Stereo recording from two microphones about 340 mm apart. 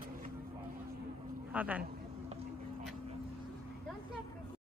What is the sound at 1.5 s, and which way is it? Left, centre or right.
Speech, centre.